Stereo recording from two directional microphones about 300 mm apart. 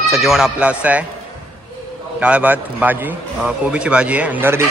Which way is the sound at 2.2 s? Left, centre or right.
Centre.